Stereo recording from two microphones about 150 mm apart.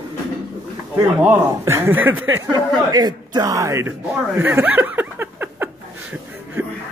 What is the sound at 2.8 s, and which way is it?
Speech, 25° right (ahead or behind).